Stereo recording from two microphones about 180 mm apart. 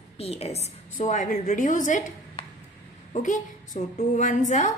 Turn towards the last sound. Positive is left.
turn(degrees=40)  # may be behind; listen again after turning